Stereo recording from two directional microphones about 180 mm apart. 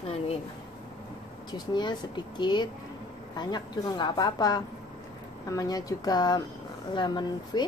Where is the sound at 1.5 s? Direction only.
25° left (ahead or behind).